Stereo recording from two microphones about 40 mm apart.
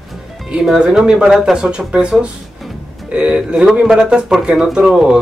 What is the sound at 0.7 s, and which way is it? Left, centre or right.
Speech, centre.